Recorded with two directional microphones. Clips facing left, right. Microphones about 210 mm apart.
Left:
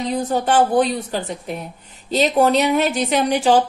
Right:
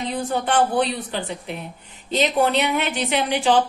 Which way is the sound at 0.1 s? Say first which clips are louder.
Left 4 dB; 40° left (ahead or behind).